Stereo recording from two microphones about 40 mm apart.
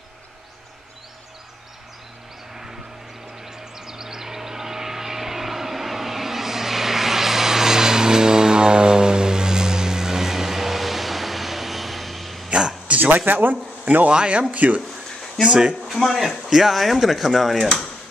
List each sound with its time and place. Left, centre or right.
3.4 s vehicle: centre
12.4 s a sound: right
13.0 s speech: right
13.8 s speech: right
14.1 s speech: right
14.5 s speech: right
15.4 s speech: right
15.9 s speech: centre